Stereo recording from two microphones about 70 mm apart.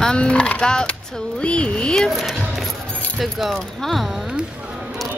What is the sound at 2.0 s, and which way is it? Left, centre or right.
Speech, centre.